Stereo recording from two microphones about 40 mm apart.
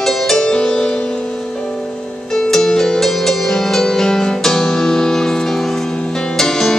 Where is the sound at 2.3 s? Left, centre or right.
Centre.